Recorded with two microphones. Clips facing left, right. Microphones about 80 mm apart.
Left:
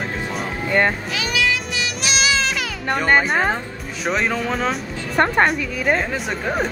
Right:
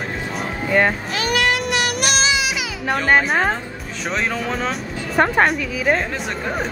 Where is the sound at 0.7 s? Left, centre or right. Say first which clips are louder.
Right 1 dB; centre.